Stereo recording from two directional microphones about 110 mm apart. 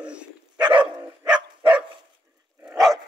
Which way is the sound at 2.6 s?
5° right (ahead or behind).